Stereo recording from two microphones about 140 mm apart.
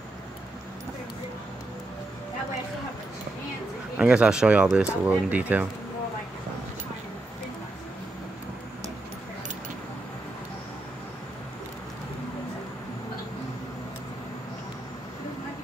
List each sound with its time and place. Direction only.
3.9 s speech: 5° right (ahead or behind)